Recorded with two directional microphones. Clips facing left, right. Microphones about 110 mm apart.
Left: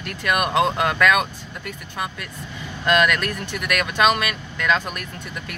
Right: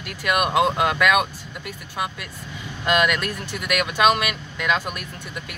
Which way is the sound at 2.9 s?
15° right (ahead or behind).